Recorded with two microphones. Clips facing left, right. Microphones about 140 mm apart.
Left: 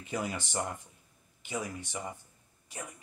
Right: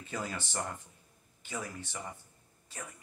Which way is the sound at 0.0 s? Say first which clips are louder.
Left 3 dB; 15° left (ahead or behind).